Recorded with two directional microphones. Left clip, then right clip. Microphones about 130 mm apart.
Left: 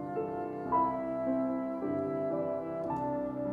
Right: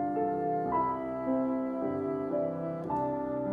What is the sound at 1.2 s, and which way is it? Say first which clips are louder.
Music: right 3 dB; 25° right (ahead or behind).